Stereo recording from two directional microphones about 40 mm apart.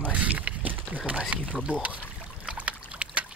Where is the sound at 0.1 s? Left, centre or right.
Right.